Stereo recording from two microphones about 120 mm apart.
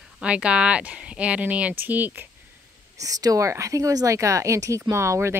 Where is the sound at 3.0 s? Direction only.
30° right (ahead or behind).